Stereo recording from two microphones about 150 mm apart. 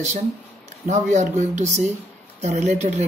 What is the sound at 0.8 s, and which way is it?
Speech, 50° right (ahead or behind).